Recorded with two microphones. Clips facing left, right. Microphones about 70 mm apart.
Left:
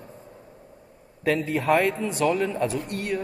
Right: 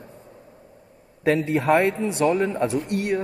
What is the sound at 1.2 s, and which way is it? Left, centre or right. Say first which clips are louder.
Speech: right 3 dB; right.